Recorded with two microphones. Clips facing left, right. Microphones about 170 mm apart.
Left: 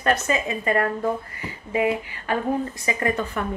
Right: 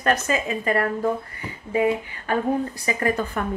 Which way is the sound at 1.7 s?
30° right (ahead or behind).